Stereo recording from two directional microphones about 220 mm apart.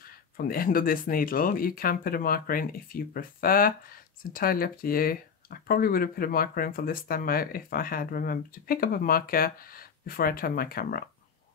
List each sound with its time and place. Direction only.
0.0 s speech: 40° left (ahead or behind)